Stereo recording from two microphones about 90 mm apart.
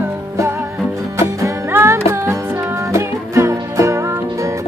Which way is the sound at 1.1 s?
30° right (ahead or behind).